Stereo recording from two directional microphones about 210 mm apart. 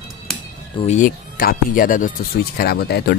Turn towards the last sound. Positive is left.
turn(degrees=50)  # may be behind; listen again after turning